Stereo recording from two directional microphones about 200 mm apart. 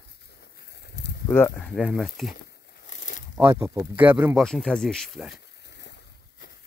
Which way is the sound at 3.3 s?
15° right (ahead or behind).